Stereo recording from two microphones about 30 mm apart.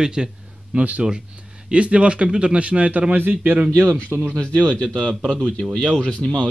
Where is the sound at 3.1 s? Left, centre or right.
Right.